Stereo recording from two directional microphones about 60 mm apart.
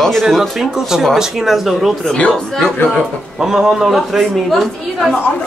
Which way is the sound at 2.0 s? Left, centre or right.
Centre.